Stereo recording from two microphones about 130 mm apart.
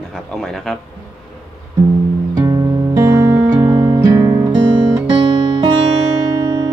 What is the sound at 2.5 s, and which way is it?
Music, 25° right (ahead or behind).